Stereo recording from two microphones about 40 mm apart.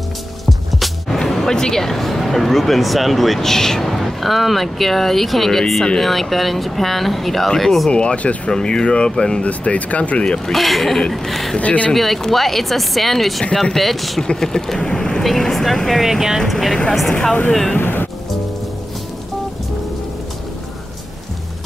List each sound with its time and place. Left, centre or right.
0.5 s speech: centre
7.9 s speech: left
8.5 s speech: centre
9.4 s speech: left
10.2 s speech: left
10.5 s speech: centre
11.5 s speech: left
11.9 s speech: centre
14.2 s speech: centre
16.0 s speech: centre
17.7 s speech: left